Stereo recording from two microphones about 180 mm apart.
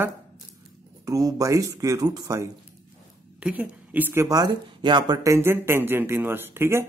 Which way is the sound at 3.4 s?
10° right (ahead or behind).